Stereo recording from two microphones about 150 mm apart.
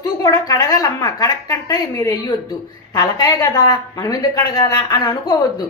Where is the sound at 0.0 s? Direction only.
25° left (ahead or behind).